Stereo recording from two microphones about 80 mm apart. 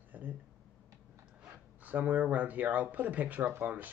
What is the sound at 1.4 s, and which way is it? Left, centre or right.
Speech, right.